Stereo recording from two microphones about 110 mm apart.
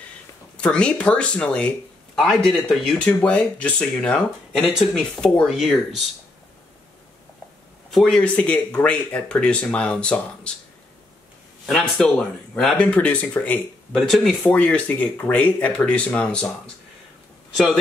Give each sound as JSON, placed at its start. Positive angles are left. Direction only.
{"t": 0.6, "sound": "speech", "side_deg": 10}
{"t": 7.9, "sound": "speech", "side_deg": 0}
{"t": 8.2, "sound": "speech", "side_deg": 10}
{"t": 11.6, "sound": "speech", "side_deg": 5}
{"t": 13.9, "sound": "speech", "side_deg": 0}
{"t": 14.4, "sound": "speech", "side_deg": 10}